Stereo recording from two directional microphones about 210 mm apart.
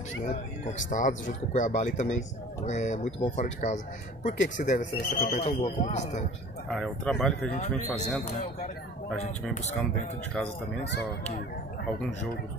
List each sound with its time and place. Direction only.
0.2 s speech: 35° left (ahead or behind)
5.3 s speech: 30° left (ahead or behind)
6.7 s speech: centre (ahead or behind)
7.5 s speech: 35° left (ahead or behind)
10.3 s speech: 5° left (ahead or behind)